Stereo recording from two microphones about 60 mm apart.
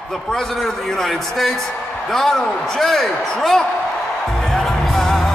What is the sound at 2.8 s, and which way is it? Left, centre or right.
Speech, centre.